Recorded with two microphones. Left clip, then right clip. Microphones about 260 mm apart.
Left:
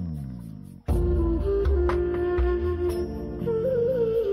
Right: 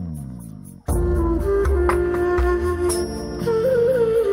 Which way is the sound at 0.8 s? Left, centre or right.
Right.